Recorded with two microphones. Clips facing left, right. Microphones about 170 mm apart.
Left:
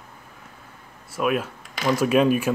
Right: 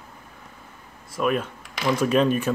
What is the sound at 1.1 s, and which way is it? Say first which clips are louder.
Speech: even; 5° left (ahead or behind).